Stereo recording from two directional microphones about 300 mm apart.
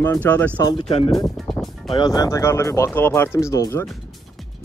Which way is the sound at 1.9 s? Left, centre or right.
Centre.